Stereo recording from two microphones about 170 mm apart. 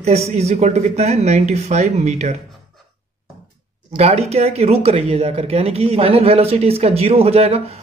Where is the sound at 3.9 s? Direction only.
40° right (ahead or behind).